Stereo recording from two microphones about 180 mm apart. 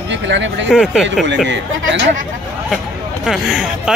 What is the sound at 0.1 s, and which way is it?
Speech, 90° right.